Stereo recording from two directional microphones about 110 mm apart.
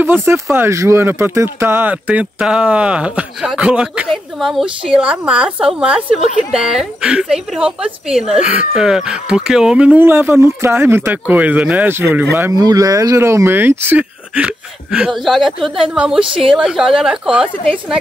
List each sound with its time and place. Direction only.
0.0 s a woman's voice: 20° right (ahead or behind)
12.5 s a woman's voice: 35° right (ahead or behind); by 17.9 s 5° right (ahead or behind)